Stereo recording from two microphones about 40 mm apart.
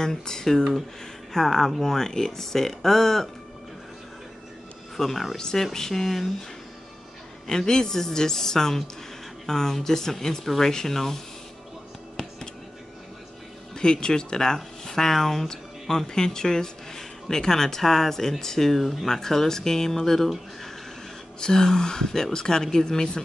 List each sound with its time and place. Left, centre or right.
0.0 s speech: centre
4.9 s speech: centre
7.4 s speech: centre
13.7 s speech: centre
21.4 s speech: centre